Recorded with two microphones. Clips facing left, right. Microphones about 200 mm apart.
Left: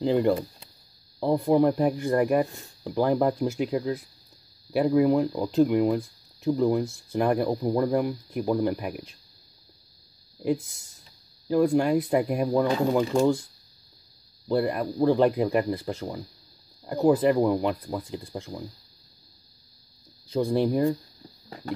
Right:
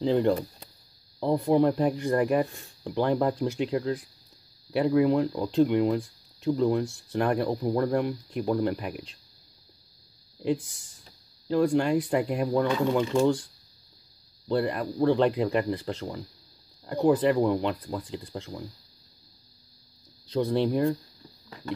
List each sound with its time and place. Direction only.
0.0 s speech: 5° left (ahead or behind)
10.4 s speech: 5° left (ahead or behind)
12.6 s speech: 40° left (ahead or behind)
14.5 s speech: 5° left (ahead or behind)
20.2 s speech: 10° left (ahead or behind)